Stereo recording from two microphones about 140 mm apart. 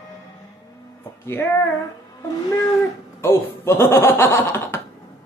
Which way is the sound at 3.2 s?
20° left (ahead or behind).